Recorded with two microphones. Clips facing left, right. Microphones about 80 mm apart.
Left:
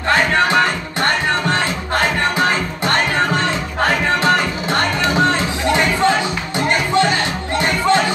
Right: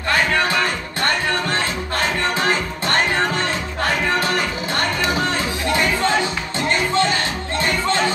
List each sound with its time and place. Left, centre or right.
0.1 s music: left
5.7 s music: left